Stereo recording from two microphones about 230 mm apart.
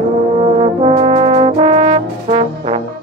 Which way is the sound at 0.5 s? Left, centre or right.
Right.